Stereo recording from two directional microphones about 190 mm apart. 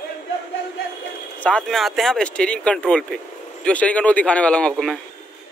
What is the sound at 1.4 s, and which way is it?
A man's voice, 5° left (ahead or behind).